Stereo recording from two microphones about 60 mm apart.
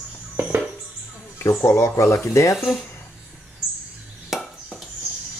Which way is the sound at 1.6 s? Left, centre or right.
Left.